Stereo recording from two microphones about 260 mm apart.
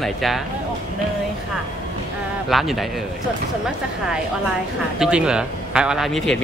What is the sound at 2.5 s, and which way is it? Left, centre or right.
Speech, centre.